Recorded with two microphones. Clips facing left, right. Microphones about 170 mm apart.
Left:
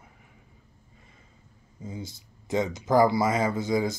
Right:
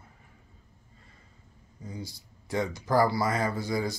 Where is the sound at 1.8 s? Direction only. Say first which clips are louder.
Left 2 dB; 25° left (ahead or behind).